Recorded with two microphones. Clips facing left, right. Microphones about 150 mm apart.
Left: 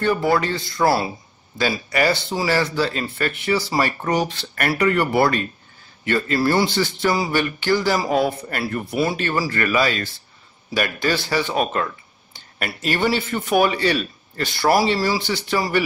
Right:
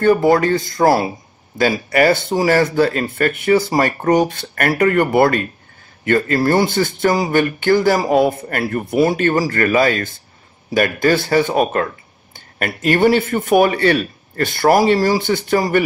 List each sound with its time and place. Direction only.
0.3 s speech: 45° right (ahead or behind)